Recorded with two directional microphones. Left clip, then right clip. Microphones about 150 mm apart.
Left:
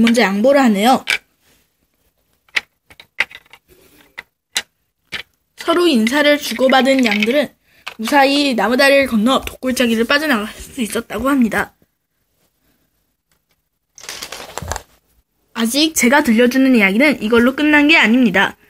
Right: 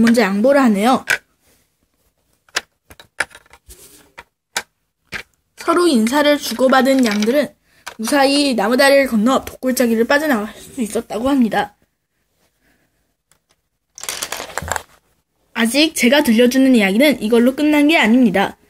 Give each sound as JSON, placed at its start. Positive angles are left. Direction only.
{"t": 0.0, "sound": "a woman's voice", "side_deg": 10}
{"t": 5.1, "sound": "a sound", "side_deg": 0}
{"t": 6.6, "sound": "a woman's voice", "side_deg": 5}
{"t": 13.3, "sound": "a sound", "side_deg": -80}
{"t": 15.6, "sound": "a woman's voice", "side_deg": 25}
{"t": 16.3, "sound": "speech", "side_deg": 5}